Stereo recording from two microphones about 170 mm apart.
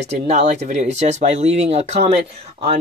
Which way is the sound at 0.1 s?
40° right (ahead or behind).